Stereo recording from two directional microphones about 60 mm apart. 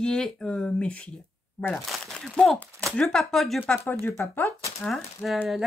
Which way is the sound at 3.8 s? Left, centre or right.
Left.